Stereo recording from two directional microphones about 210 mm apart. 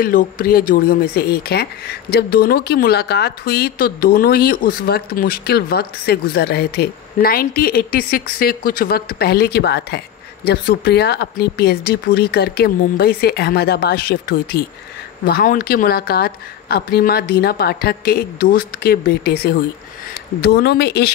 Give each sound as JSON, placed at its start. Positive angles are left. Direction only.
{"t": 0.0, "sound": "speech", "side_deg": 40}